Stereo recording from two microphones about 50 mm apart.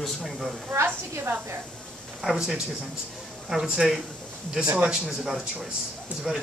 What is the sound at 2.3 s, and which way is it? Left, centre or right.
Speech, centre.